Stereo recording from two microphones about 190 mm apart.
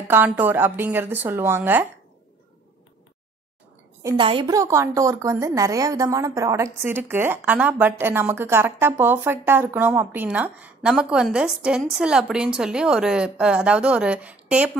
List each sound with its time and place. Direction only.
0.1 s a woman's voice: 10° right (ahead or behind)
4.0 s a woman's voice: 25° right (ahead or behind); by 14.7 s 5° right (ahead or behind)